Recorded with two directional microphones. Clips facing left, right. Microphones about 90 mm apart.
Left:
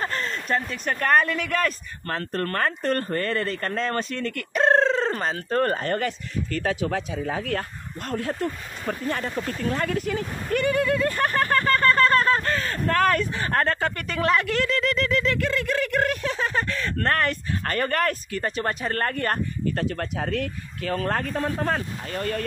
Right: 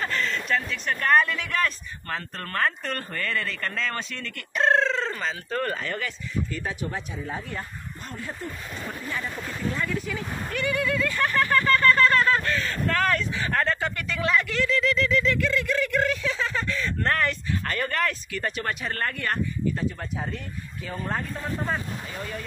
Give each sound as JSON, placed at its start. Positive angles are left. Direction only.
{"t": 0.0, "sound": "speech", "side_deg": 35}
{"t": 6.5, "sound": "speech", "side_deg": 90}
{"t": 8.1, "sound": "speech", "side_deg": 70}
{"t": 9.1, "sound": "speech", "side_deg": 55}
{"t": 19.7, "sound": "speech", "side_deg": 65}